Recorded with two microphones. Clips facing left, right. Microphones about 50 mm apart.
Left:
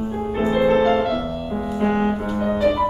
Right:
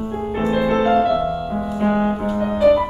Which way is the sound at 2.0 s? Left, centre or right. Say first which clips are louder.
Right 1 dB; centre.